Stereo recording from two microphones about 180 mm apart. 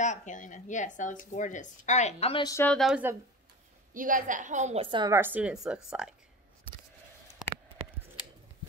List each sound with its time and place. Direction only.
0.0 s speech: 45° left (ahead or behind)
2.4 s a woman's voice: 15° left (ahead or behind)
2.7 s speech: centre (ahead or behind)
3.9 s a woman's voice: 50° right (ahead or behind)
4.9 s a woman's voice: 20° right (ahead or behind)
5.2 s speech: 10° right (ahead or behind)
7.4 s a sound: 5° right (ahead or behind)